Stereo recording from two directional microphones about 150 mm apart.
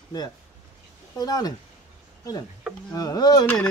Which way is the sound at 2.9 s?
25° left (ahead or behind).